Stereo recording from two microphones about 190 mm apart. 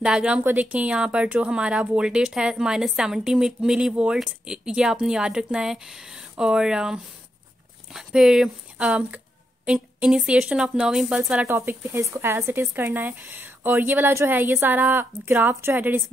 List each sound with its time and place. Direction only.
0.0 s speech: 5° right (ahead or behind)